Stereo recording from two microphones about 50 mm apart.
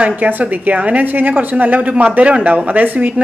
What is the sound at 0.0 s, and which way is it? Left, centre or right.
A woman's voice, right.